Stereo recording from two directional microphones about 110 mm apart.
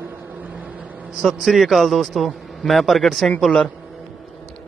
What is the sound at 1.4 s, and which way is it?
A man's voice, centre (ahead or behind).